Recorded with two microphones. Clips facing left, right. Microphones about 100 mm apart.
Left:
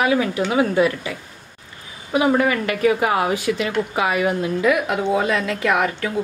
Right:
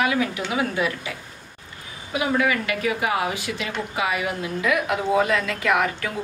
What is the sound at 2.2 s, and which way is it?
A woman's voice, 35° left (ahead or behind).